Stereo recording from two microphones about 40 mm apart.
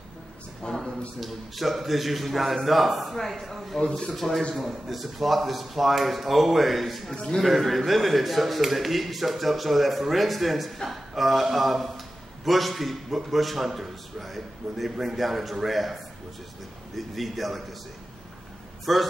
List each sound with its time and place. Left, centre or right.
0.7 s a man's voice: centre
3.8 s speech: centre
4.1 s a man's voice: centre
7.2 s a man's voice: left
7.4 s a man's voice: centre
18.9 s a man's voice: centre